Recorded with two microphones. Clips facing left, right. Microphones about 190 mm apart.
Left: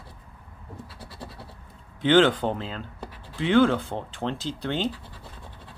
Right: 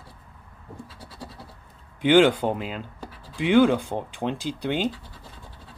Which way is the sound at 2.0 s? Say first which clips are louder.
Right 2 dB; 10° right (ahead or behind).